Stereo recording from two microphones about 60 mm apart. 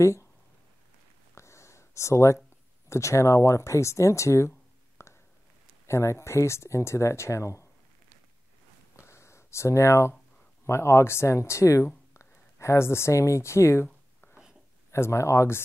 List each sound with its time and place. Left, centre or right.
0.0 s speech: left
1.3 s a sound: left
2.9 s speech: left
8.9 s a sound: left
10.6 s speech: left
14.9 s speech: left